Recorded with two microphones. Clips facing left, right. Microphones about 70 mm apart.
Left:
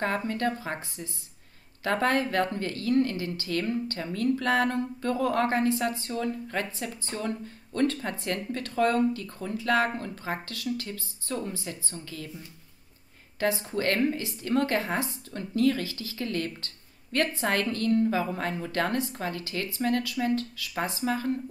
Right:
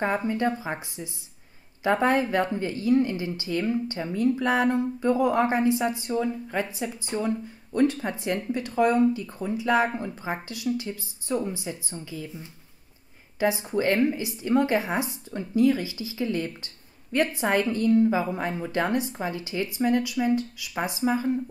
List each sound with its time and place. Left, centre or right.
0.0 s a woman's voice: centre